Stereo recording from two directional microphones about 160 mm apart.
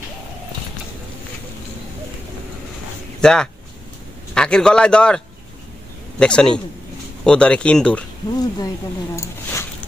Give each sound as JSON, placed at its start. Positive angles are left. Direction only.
{"t": 3.2, "sound": "a man's voice", "side_deg": 5}
{"t": 8.3, "sound": "speech", "side_deg": 25}